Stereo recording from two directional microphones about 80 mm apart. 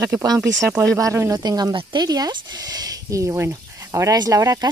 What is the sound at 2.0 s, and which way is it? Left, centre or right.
Speech, right.